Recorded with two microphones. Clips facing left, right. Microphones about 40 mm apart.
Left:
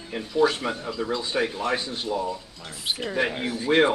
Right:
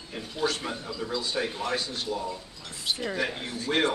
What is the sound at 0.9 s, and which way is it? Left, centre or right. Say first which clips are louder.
Speech: left 6 dB; left.